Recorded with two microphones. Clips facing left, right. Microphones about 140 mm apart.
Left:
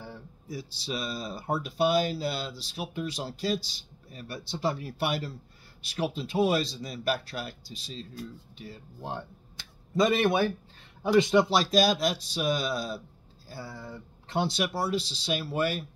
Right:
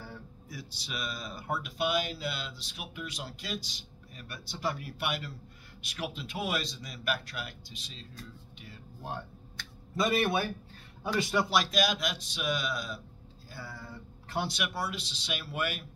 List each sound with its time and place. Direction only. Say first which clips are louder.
0.0 s speech: left 2 dB; 25° left (ahead or behind)
11.1 s speech: left 8 dB; 20° left (ahead or behind)